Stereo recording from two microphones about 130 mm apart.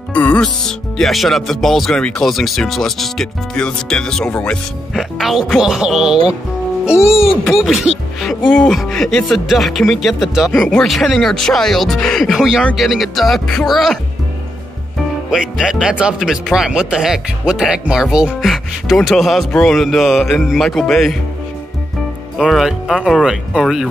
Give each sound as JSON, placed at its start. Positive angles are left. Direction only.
{"t": 0.1, "sound": "speech", "side_deg": 10}
{"t": 7.1, "sound": "speech", "side_deg": 50}
{"t": 7.4, "sound": "speech", "side_deg": 0}
{"t": 15.3, "sound": "speech", "side_deg": -5}
{"t": 22.4, "sound": "speech", "side_deg": -5}